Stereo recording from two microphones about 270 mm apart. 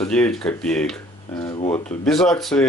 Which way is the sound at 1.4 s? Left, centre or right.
Left.